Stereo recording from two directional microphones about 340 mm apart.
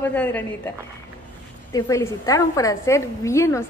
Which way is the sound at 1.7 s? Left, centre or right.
Centre.